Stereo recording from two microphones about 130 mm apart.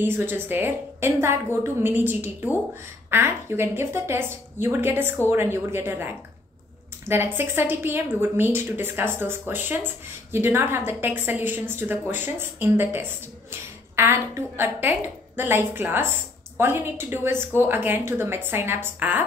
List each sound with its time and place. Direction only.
0.0 s a woman's voice: 15° right (ahead or behind)